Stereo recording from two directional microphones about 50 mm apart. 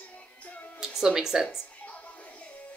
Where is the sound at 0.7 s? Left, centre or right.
Centre.